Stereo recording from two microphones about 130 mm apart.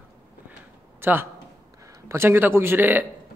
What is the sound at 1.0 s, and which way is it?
A man's voice, 15° right (ahead or behind).